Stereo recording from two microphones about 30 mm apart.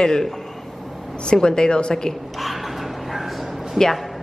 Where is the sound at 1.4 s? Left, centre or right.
Left.